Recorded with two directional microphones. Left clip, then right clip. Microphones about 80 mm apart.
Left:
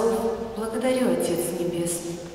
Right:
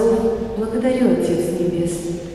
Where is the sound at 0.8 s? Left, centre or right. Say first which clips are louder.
Right 5 dB; left.